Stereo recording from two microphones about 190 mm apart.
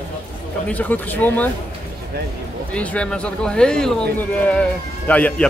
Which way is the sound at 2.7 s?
5° left (ahead or behind).